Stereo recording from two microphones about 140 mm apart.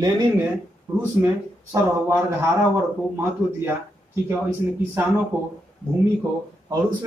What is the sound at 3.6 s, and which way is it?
A man's voice, 15° right (ahead or behind).